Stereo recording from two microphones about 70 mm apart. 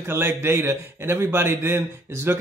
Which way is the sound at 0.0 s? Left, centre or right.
Right.